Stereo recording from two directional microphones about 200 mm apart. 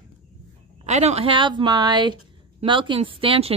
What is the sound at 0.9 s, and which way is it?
A woman's voice, 35° right (ahead or behind).